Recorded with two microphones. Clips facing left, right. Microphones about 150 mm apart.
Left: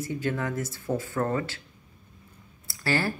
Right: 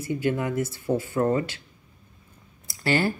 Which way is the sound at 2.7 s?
20° right (ahead or behind).